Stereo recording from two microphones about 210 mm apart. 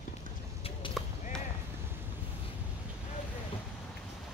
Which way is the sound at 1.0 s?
Centre (ahead or behind).